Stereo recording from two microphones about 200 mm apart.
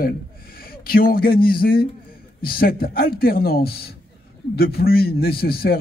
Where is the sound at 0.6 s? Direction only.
50° left (ahead or behind).